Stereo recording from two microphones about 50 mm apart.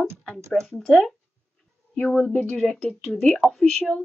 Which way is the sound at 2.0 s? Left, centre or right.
Left.